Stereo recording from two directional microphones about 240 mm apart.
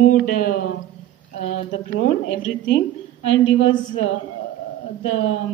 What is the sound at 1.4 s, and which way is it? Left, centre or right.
Speech, left.